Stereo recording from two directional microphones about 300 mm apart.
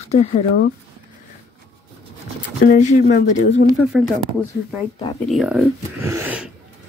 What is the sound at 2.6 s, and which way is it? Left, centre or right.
Speech, left.